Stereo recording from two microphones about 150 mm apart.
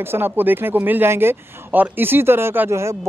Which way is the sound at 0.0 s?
15° right (ahead or behind).